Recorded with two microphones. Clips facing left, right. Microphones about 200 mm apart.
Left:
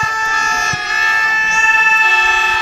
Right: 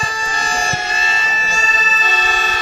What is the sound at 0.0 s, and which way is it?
Music, 30° right (ahead or behind).